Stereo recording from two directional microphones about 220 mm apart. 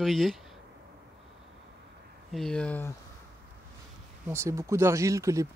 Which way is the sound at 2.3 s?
5° left (ahead or behind).